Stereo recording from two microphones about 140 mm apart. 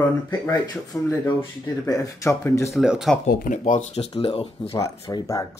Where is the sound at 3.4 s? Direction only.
70° left (ahead or behind).